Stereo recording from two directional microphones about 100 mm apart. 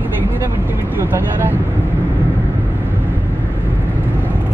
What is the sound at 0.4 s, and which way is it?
Speech, 20° right (ahead or behind).